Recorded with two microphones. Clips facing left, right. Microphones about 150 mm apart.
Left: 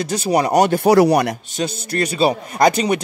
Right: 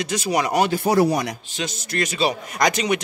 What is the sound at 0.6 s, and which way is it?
Speech, 65° left (ahead or behind).